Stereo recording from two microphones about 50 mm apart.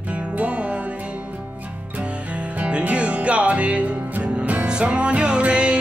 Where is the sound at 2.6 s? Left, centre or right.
Right.